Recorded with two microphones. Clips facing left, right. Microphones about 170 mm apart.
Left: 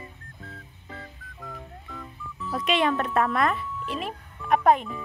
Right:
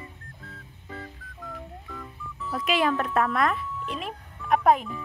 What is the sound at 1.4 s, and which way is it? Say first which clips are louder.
Music: right 1 dB; centre (ahead or behind).